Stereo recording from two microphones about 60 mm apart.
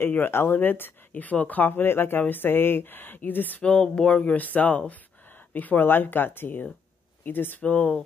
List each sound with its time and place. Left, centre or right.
0.0 s speech: left
3.6 s speech: centre